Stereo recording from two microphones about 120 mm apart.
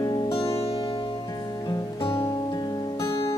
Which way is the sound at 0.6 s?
50° left (ahead or behind).